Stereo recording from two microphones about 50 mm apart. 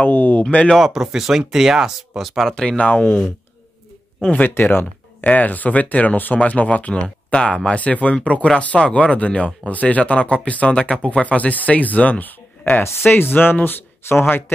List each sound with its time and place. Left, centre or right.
0.0 s speech: left
0.4 s speech: left
0.7 s speech: centre
2.5 s speech: centre
4.5 s speech: left
5.2 s speech: left
13.0 s speech: left